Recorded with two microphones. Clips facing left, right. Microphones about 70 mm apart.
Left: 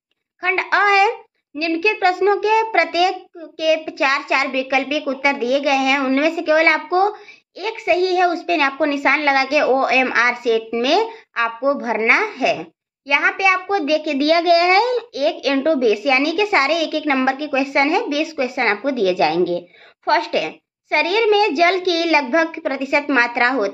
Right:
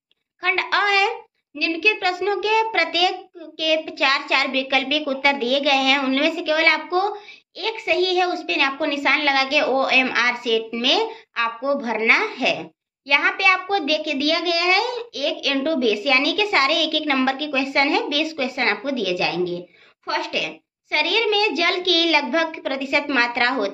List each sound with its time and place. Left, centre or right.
0.4 s a child's voice: left
20.3 s a child's voice: left